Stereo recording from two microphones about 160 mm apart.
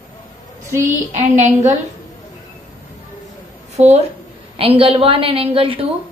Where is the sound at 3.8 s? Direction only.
40° right (ahead or behind).